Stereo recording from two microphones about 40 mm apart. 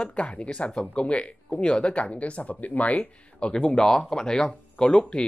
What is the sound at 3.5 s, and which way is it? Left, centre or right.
Speech, centre.